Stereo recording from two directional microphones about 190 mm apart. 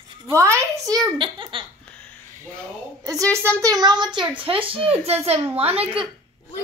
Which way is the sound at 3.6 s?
20° right (ahead or behind).